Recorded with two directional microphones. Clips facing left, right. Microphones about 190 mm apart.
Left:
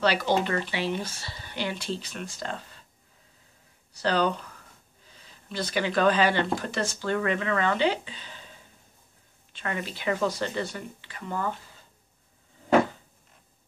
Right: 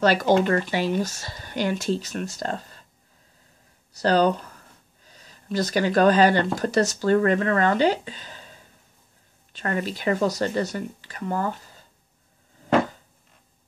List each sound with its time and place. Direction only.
0.0 s speech: 45° right (ahead or behind)
3.9 s speech: 40° right (ahead or behind)
9.5 s speech: 40° right (ahead or behind)